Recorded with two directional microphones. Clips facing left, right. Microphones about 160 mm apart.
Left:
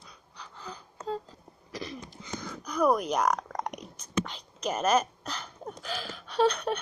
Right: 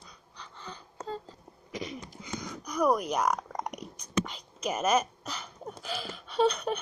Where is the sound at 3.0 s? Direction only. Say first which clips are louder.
Left 1 dB; 10° right (ahead or behind).